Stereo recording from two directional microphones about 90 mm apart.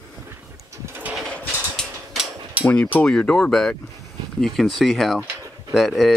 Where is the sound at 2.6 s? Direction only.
15° left (ahead or behind).